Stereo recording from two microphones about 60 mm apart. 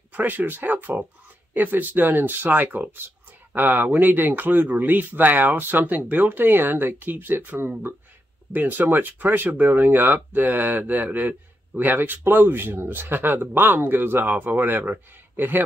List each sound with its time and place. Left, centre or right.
0.1 s speech: right